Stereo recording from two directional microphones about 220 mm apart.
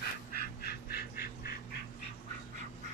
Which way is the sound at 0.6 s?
45° left (ahead or behind).